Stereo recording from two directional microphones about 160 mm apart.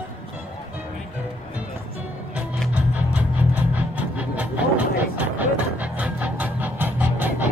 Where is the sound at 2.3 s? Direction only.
10° right (ahead or behind).